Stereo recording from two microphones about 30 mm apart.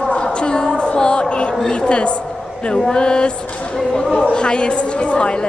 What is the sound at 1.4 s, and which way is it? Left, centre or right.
A woman's voice, left.